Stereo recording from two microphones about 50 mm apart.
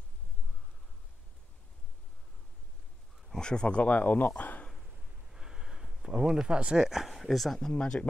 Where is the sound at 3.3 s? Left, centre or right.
Centre; by 4.6 s left.